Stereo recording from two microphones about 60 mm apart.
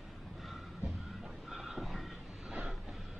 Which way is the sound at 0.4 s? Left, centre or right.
Centre.